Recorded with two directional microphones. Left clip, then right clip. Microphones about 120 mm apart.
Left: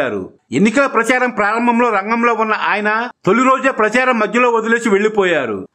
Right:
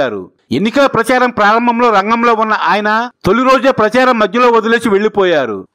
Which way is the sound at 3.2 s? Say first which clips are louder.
Right 2 dB; 50° right (ahead or behind).